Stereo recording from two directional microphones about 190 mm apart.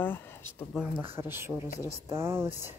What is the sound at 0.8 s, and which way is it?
Speech, 10° right (ahead or behind).